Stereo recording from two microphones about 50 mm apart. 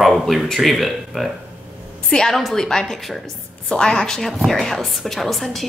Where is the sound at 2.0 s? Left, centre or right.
Centre.